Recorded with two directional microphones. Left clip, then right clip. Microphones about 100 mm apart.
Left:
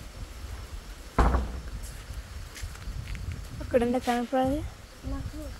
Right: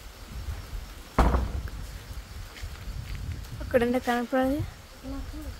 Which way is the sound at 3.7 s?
35° right (ahead or behind).